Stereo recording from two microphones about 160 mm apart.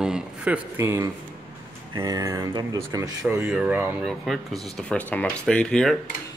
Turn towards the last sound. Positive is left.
turn(degrees=5)  # may be behind; listen again after turning